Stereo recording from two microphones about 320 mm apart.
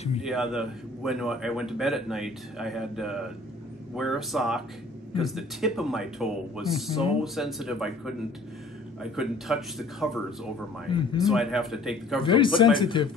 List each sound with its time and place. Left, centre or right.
0.2 s a man's voice: centre
9.1 s a man's voice: centre
10.9 s speech: centre
11.2 s a man's voice: centre
12.2 s speech: centre